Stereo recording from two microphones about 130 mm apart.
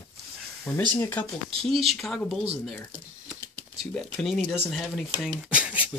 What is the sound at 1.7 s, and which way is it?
Speech, 45° right (ahead or behind).